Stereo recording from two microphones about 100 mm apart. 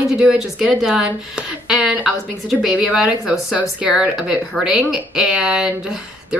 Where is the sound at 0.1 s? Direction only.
10° right (ahead or behind).